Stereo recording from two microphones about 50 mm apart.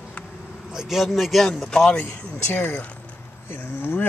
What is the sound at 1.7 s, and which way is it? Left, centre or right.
Speech, centre.